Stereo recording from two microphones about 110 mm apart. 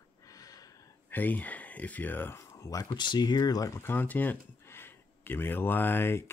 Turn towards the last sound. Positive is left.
turn(degrees=20)  # may be behind; listen again after turning